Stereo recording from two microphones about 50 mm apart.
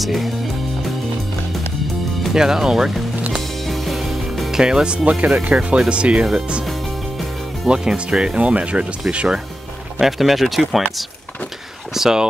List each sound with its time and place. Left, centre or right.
0.0 s speech: centre
2.3 s speech: centre
3.6 s music: centre
4.6 s speech: centre
7.6 s speech: centre
9.9 s speech: centre
11.9 s speech: centre